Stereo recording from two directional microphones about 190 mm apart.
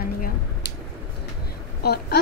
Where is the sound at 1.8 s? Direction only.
55° left (ahead or behind).